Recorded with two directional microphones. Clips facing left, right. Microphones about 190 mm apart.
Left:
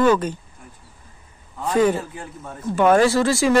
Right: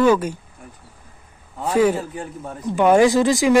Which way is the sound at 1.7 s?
10° right (ahead or behind).